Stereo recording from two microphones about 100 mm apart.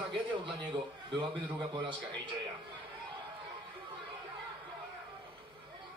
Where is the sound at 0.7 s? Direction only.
55° right (ahead or behind).